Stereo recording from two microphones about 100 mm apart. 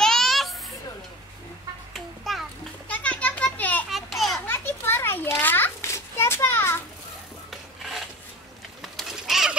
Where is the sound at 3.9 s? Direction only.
Centre (ahead or behind).